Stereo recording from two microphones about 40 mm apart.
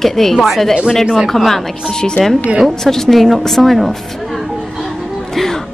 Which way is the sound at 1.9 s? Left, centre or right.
Centre.